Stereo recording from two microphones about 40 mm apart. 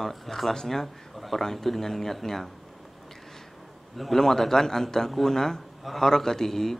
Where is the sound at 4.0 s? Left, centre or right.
Centre.